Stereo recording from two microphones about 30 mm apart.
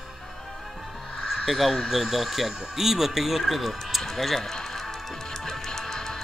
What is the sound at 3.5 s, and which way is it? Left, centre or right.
Speech, centre.